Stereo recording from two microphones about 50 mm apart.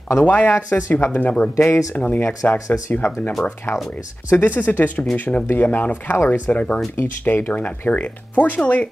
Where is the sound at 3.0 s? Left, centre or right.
Left.